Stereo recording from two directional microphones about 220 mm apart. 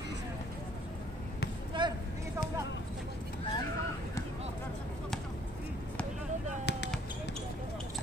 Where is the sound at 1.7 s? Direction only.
20° right (ahead or behind).